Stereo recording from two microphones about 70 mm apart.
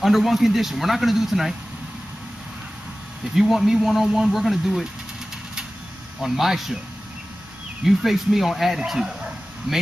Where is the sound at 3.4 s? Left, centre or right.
Centre.